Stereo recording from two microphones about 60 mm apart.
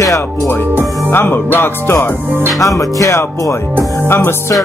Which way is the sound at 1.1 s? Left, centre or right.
Left.